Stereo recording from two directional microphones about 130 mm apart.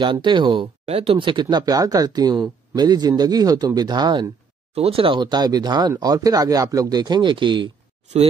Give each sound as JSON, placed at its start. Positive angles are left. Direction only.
{"t": 0.0, "sound": "speech", "side_deg": -40}
{"t": 4.7, "sound": "speech", "side_deg": -50}